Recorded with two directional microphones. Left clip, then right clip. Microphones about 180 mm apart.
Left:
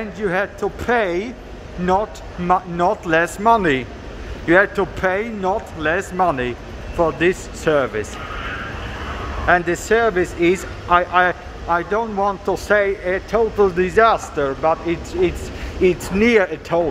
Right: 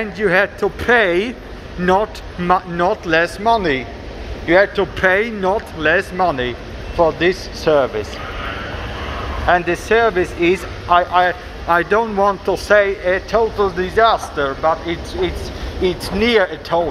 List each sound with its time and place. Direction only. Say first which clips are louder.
0.0 s speech: right 6 dB; centre (ahead or behind)
2.8 s speech: right 1 dB; 20° left (ahead or behind)
3.4 s speech: even; 40° left (ahead or behind)
5.0 s speech: right 6 dB; 5° left (ahead or behind)
6.1 s speech: right 1 dB; 25° left (ahead or behind)
9.5 s speech: right 1 dB; 25° left (ahead or behind)
11.6 s speech: right 4 dB; 5° right (ahead or behind)
12.4 s speech: right 2 dB; 30° left (ahead or behind)
13.6 s speech: even; 55° left (ahead or behind)